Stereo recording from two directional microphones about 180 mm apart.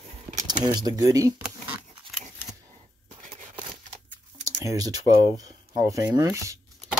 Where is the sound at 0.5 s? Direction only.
20° right (ahead or behind).